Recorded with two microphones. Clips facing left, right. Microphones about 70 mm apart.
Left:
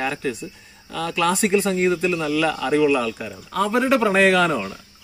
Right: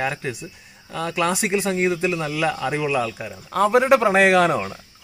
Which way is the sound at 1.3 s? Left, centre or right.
Centre.